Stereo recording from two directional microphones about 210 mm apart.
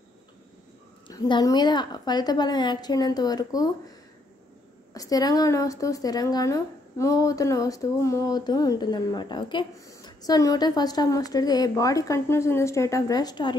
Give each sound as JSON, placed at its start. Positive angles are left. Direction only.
{"t": 1.0, "sound": "a woman's voice", "side_deg": 20}
{"t": 4.9, "sound": "a woman's voice", "side_deg": 15}